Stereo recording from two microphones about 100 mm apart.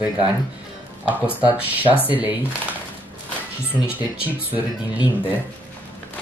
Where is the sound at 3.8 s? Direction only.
10° right (ahead or behind).